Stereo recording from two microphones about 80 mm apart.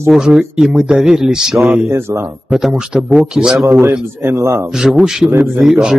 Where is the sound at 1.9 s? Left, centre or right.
Right.